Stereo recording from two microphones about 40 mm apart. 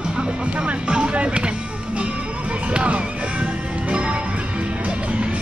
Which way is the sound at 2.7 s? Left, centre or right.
Right.